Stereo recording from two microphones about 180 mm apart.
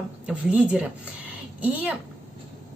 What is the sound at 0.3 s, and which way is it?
Speech, 5° right (ahead or behind).